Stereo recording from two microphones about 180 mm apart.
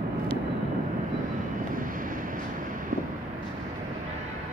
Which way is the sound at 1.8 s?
50° right (ahead or behind).